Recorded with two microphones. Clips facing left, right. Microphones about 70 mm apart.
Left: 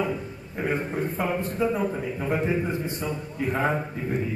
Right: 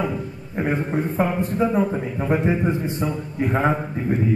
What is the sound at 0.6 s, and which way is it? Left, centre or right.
A man's voice, right.